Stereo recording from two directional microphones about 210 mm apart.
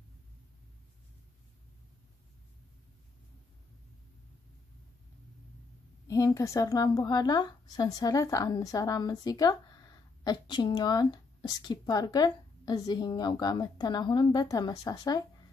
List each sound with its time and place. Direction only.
6.0 s a woman's voice: 15° left (ahead or behind)